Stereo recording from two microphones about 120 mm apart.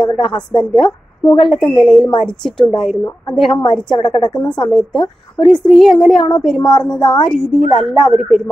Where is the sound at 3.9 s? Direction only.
40° left (ahead or behind).